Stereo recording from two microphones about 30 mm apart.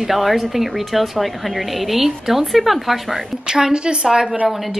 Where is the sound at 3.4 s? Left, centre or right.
Right.